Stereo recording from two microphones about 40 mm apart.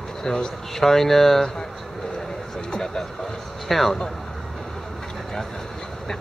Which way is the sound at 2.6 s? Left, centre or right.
Centre.